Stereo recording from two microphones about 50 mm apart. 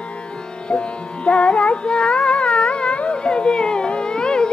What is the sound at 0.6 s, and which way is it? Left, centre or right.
Music, left.